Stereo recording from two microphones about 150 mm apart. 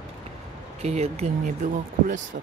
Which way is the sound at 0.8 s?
45° right (ahead or behind).